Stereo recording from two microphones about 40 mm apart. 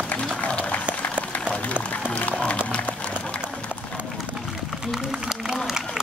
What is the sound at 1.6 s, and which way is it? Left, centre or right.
Music, left.